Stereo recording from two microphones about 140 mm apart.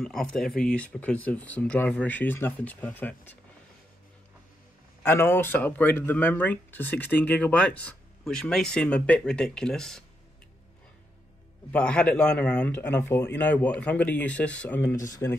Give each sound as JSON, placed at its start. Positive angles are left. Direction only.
{"t": 0.0, "sound": "speech", "side_deg": 5}
{"t": 5.0, "sound": "speech", "side_deg": 15}
{"t": 11.7, "sound": "speech", "side_deg": 10}